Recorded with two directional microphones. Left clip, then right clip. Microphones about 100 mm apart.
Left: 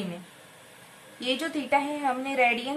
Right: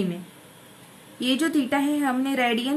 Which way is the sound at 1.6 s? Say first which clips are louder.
Right 2 dB; 35° right (ahead or behind).